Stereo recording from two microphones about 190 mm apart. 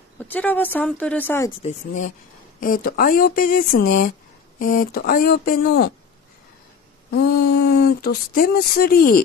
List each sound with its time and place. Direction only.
0.2 s speech: 10° left (ahead or behind)
1.6 s speech: 40° left (ahead or behind)
7.1 s speech: 60° left (ahead or behind)